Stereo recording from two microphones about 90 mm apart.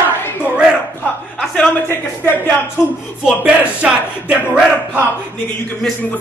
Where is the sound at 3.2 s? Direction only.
10° right (ahead or behind).